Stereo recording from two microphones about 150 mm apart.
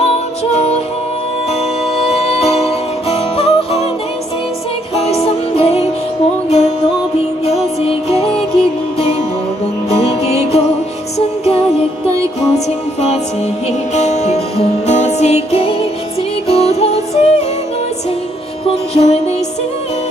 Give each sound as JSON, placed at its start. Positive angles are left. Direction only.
{"t": 0.0, "sound": "music", "side_deg": 45}
{"t": 2.1, "sound": "music", "side_deg": 45}
{"t": 4.9, "sound": "music", "side_deg": 45}
{"t": 10.2, "sound": "music", "side_deg": 45}
{"t": 18.9, "sound": "music", "side_deg": 45}